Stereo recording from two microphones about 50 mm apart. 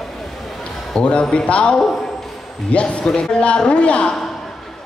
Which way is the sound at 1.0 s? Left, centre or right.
Left.